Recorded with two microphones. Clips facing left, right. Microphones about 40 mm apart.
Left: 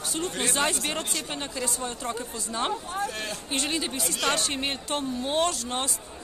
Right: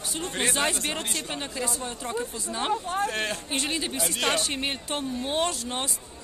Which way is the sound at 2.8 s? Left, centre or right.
Right.